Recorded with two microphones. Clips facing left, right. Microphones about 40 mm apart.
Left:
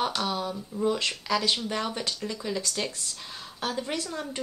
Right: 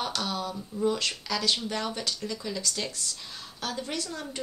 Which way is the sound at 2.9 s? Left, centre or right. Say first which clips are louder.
Even; left.